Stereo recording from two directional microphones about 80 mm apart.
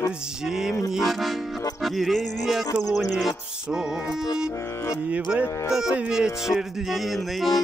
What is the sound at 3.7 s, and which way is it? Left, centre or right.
Music, centre.